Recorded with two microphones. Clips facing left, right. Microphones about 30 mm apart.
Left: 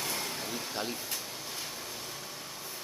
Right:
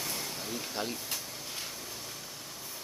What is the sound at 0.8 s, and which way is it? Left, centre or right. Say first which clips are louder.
Speech: right 1 dB; centre.